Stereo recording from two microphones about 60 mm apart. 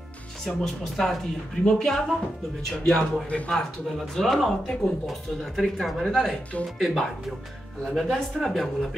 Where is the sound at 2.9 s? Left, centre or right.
Centre.